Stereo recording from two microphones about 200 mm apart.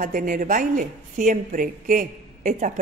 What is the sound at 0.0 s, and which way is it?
A man's voice, 40° right (ahead or behind).